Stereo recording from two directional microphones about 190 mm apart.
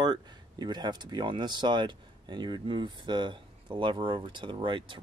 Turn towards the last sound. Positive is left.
turn(degrees=-25)  # may be behind; listen again after turning